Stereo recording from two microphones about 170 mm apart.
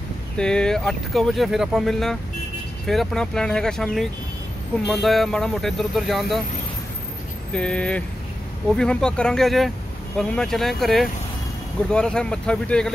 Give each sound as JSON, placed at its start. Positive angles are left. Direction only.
{"t": 0.4, "sound": "speech", "side_deg": 5}
{"t": 7.5, "sound": "speech", "side_deg": 5}